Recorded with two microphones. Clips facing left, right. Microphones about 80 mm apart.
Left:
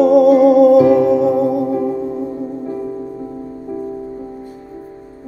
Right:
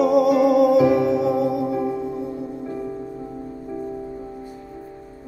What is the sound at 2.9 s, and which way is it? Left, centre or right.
Music, centre.